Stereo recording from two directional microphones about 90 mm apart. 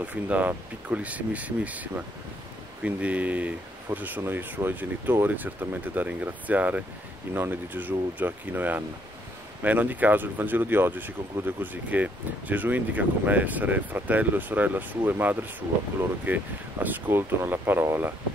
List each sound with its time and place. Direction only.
0.0 s speech: 15° right (ahead or behind)